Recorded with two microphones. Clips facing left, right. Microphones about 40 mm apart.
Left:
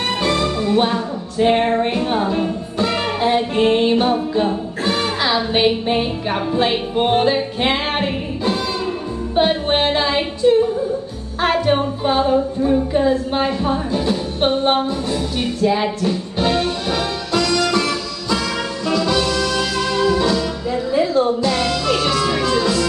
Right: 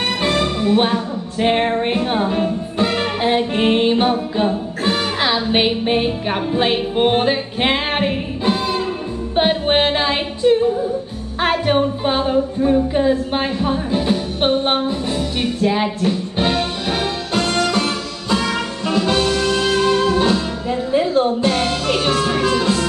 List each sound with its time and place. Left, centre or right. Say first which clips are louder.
0.2 s music: even; right
5.5 s music: even; right
11.6 s music: right 1 dB; right
12.9 s music: even; right